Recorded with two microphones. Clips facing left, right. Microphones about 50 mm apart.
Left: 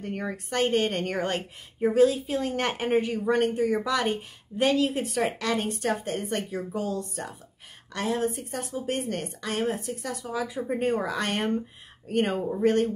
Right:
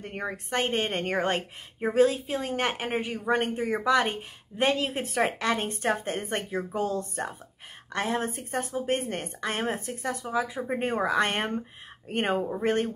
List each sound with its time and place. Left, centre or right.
0.0 s a woman's voice: right